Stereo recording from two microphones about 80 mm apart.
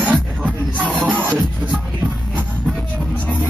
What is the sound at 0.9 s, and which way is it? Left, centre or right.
Music, centre.